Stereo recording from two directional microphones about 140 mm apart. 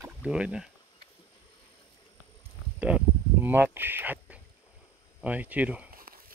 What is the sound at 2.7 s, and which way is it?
Speech, 10° right (ahead or behind).